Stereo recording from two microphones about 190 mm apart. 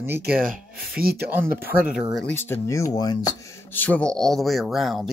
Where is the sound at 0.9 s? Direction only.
55° right (ahead or behind).